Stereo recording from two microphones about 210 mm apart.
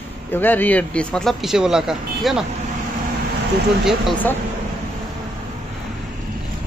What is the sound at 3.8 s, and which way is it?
Speech, centre (ahead or behind).